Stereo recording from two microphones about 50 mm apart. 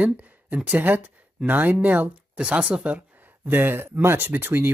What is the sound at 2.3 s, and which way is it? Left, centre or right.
Speech, centre.